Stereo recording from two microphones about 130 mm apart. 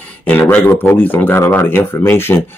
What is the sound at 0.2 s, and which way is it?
Speech, 15° left (ahead or behind).